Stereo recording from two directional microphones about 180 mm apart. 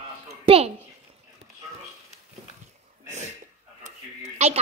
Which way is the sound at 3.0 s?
40° right (ahead or behind).